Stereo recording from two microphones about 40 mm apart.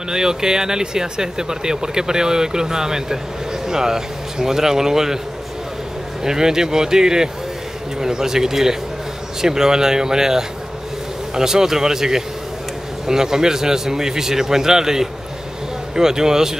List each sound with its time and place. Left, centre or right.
0.1 s speech: centre
6.2 s speech: centre